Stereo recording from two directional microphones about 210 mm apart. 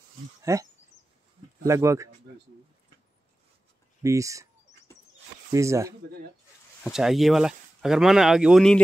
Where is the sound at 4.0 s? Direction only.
15° right (ahead or behind).